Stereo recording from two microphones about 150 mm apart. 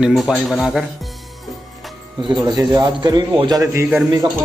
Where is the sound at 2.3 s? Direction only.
25° right (ahead or behind).